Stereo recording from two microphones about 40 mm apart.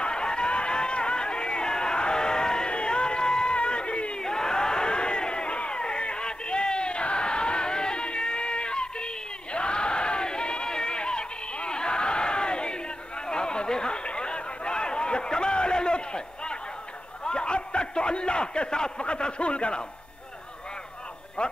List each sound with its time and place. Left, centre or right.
0.0 s run: left
4.2 s crowd: centre
13.3 s chatter: left
17.2 s a sound: left
21.4 s music: left